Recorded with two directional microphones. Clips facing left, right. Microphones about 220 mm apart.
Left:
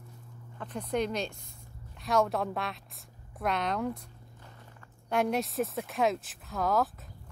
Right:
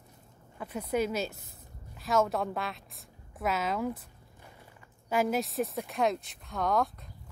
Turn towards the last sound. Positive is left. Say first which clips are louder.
# even
turn(degrees=5)  # may be behind; listen again after turning